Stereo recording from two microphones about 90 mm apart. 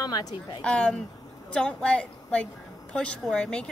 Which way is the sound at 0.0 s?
50° left (ahead or behind).